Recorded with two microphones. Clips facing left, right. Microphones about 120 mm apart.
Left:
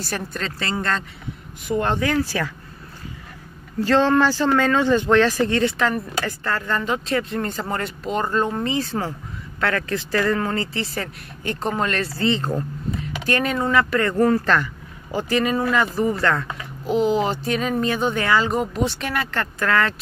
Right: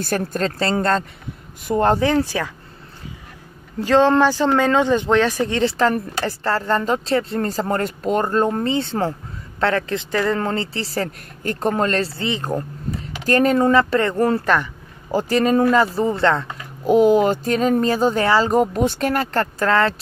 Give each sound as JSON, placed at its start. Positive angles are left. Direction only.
{"t": 0.0, "sound": "speech", "side_deg": -50}
{"t": 2.0, "sound": "speech", "side_deg": -20}
{"t": 3.8, "sound": "speech", "side_deg": -15}
{"t": 5.8, "sound": "speech", "side_deg": -35}
{"t": 8.6, "sound": "speech", "side_deg": -30}
{"t": 10.4, "sound": "speech", "side_deg": -30}
{"t": 12.3, "sound": "speech", "side_deg": -15}
{"t": 13.0, "sound": "speech", "side_deg": -35}
{"t": 14.4, "sound": "speech", "side_deg": -15}
{"t": 15.1, "sound": "speech", "side_deg": -40}
{"t": 16.8, "sound": "speech", "side_deg": -50}